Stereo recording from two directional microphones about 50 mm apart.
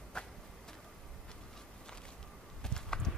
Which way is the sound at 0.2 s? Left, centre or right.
Centre.